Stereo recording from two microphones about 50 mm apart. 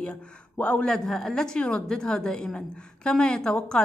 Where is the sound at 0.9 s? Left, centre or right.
Centre.